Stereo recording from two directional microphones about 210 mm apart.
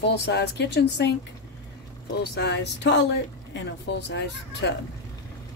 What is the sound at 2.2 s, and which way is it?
Speech, 55° left (ahead or behind).